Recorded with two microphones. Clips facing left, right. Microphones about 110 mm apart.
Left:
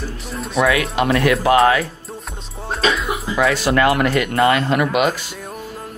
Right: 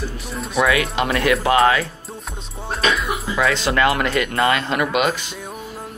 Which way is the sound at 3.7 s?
30° left (ahead or behind).